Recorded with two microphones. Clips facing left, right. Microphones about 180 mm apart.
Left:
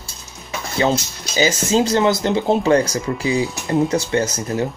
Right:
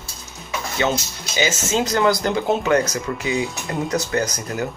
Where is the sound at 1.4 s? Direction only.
35° left (ahead or behind).